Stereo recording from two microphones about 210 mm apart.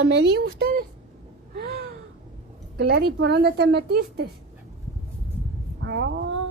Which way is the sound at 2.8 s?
50° right (ahead or behind).